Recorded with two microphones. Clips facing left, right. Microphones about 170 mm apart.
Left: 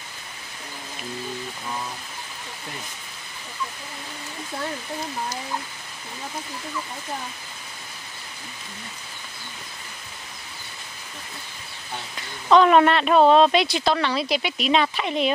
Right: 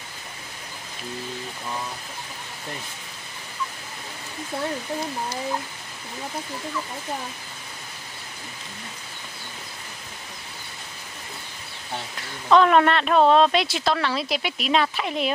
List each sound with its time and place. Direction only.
12.4 s speech: centre (ahead or behind)